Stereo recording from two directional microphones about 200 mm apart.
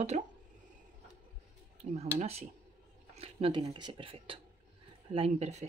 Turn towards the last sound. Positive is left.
turn(degrees=-35)  # may be behind; listen again after turning